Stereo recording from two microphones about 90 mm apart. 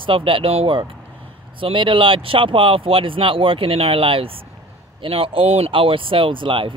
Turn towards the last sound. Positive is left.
turn(degrees=-70)  # may be behind; listen again after turning